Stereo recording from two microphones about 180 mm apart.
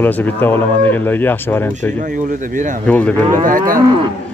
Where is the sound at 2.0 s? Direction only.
45° right (ahead or behind).